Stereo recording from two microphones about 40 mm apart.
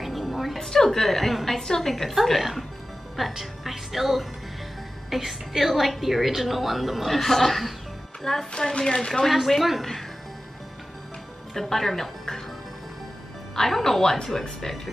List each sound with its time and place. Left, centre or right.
0.0 s music: centre
0.6 s a woman's voice: centre
8.2 s a woman's voice: centre
9.6 s a woman's voice: centre
11.5 s a woman's voice: centre
13.6 s a woman's voice: centre